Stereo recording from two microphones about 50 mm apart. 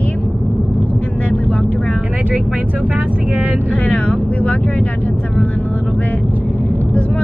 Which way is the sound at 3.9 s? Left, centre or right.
Left.